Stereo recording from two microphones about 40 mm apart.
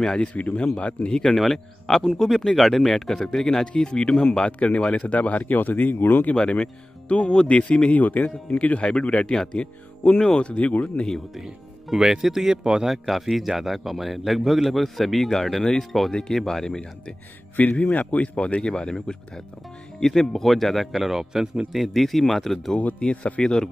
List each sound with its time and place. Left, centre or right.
0.2 s speech: left
1.1 s speech: centre
5.0 s speech: left
6.6 s speech: left
8.5 s speech: left
11.3 s a man's voice: centre
16.1 s speech: centre
17.6 s a man's voice: left; by 20.9 s centre
20.9 s speech: centre
21.7 s a man's voice: centre
22.8 s speech: left
23.4 s speech: left